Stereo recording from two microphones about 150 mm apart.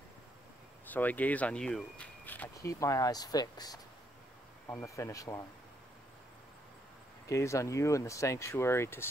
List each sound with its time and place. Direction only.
0.8 s speech: 10° left (ahead or behind)
4.8 s speech: 20° left (ahead or behind)
7.2 s speech: 20° left (ahead or behind)